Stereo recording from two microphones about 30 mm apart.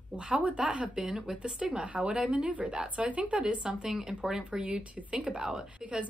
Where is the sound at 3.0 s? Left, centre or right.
Right.